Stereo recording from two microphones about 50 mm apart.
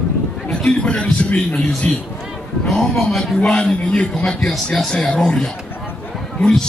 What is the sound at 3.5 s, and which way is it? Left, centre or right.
Speech, left.